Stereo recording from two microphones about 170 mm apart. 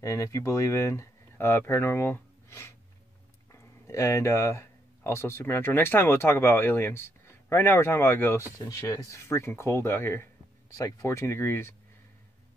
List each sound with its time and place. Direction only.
0.0 s speech: 20° left (ahead or behind)